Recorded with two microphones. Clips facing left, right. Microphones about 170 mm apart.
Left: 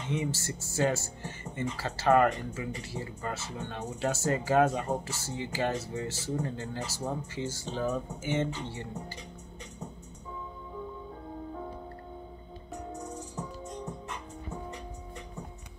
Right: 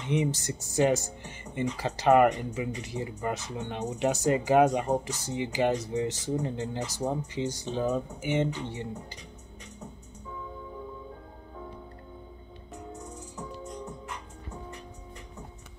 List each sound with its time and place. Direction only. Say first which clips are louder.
0.1 s speech: right 5 dB; 20° right (ahead or behind)